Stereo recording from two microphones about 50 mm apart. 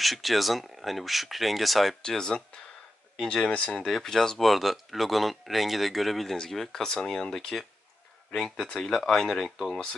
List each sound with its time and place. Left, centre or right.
0.0 s speech: centre
2.0 s speech: centre
3.7 s speech: centre